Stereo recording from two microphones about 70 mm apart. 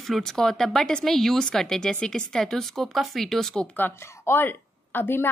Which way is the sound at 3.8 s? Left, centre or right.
Left.